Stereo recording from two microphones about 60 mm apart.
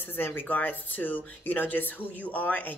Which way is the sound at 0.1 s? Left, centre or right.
Left.